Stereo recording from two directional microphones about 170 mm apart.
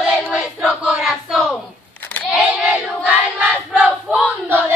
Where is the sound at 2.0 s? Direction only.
10° left (ahead or behind).